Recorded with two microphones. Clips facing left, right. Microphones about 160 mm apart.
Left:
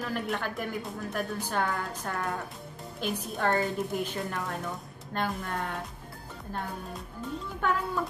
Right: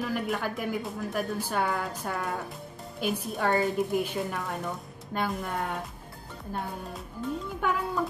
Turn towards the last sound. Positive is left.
turn(degrees=-10)  # may be behind; listen again after turning